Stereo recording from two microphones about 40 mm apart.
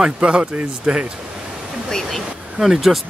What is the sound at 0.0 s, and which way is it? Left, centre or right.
Speech, right.